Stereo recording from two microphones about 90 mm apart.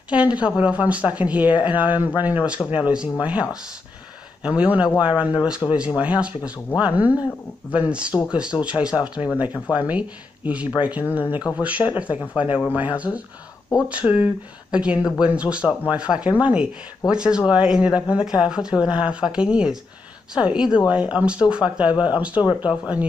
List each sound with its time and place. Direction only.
0.1 s speech: 15° right (ahead or behind)